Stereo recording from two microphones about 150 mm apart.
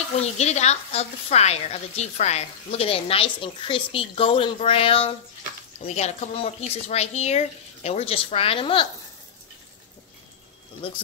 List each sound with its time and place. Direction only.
0.2 s a woman's voice: 45° left (ahead or behind)
10.8 s a woman's voice: 35° left (ahead or behind)